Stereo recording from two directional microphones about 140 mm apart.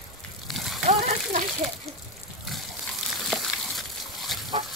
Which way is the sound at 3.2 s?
Centre (ahead or behind).